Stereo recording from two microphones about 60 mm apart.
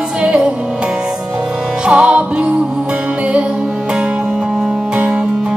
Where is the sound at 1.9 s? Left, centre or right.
Centre.